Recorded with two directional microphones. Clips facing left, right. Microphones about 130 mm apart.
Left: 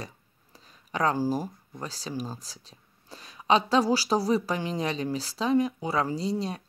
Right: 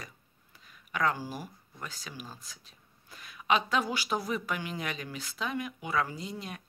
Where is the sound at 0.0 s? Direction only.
35° left (ahead or behind).